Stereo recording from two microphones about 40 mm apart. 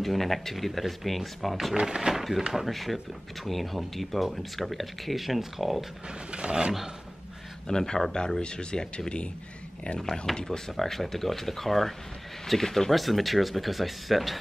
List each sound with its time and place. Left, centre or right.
0.0 s speech: centre
1.8 s speech: centre
2.5 s speech: centre
6.0 s speech: right
7.6 s speech: centre
9.9 s speech: centre
10.7 s speech: centre